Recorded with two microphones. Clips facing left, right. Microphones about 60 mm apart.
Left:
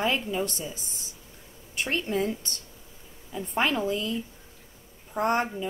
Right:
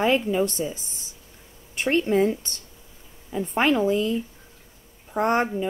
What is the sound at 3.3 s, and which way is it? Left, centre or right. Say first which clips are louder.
Speech: right 5 dB; right.